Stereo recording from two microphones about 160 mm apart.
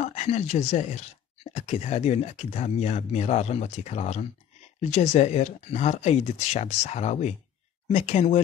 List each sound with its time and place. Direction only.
0.0 s speech: 45° left (ahead or behind)